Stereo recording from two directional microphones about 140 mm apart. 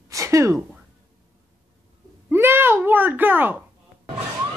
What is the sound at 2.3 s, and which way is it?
A child's voice, 15° right (ahead or behind).